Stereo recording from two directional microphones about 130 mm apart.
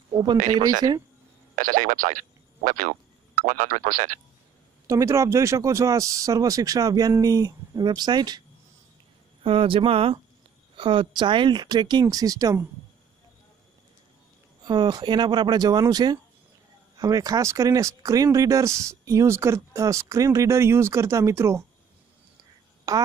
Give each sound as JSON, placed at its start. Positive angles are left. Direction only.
{"t": 0.1, "sound": "a sound", "side_deg": -35}
{"t": 1.5, "sound": "speech", "side_deg": -90}
{"t": 4.8, "sound": "speech", "side_deg": -25}
{"t": 9.4, "sound": "speech", "side_deg": -45}
{"t": 14.6, "sound": "speech", "side_deg": -35}
{"t": 22.9, "sound": "speech", "side_deg": -25}